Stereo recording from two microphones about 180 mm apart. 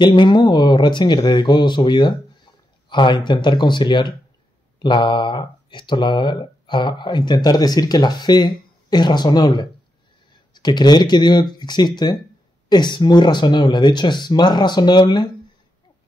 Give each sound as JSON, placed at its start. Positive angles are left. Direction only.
{"t": 0.0, "sound": "speech", "side_deg": 25}